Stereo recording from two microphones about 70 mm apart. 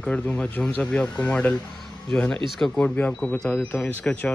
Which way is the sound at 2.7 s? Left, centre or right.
Centre.